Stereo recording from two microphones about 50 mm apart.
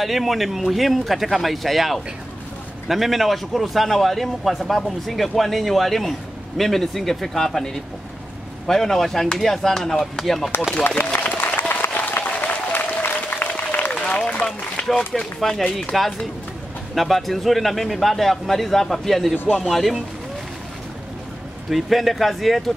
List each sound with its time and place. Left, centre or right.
0.0 s a man's voice: centre
11.1 s applause: left
14.9 s a man's voice: centre
21.6 s a man's voice: centre